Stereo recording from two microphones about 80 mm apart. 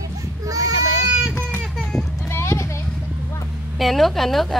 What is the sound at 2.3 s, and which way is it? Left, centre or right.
Clip-clop, left.